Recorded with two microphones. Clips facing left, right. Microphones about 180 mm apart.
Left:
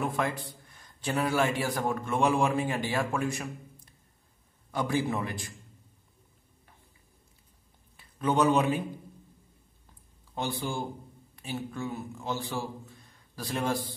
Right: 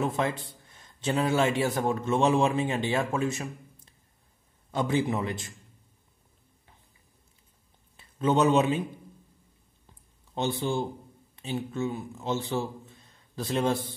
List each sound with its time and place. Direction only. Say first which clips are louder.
0.0 s a man's voice: right 2 dB; 25° right (ahead or behind)
8.0 s a man's voice: right 2 dB; 25° right (ahead or behind)
10.3 s a man's voice: right 4 dB; 25° right (ahead or behind)